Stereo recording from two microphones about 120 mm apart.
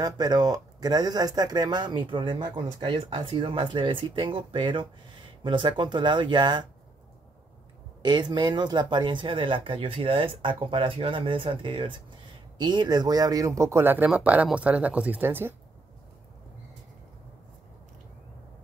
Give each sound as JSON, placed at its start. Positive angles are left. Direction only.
{"t": 0.0, "sound": "speech", "side_deg": -35}
{"t": 8.0, "sound": "speech", "side_deg": -40}